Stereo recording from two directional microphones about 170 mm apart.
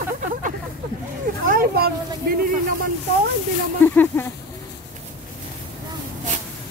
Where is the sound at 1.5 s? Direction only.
60° right (ahead or behind).